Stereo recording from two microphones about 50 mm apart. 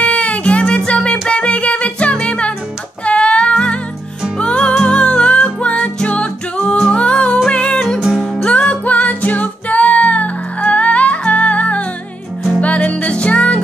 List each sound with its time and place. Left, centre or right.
0.0 s music: left